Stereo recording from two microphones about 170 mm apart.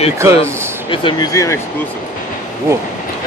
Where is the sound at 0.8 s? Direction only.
30° left (ahead or behind).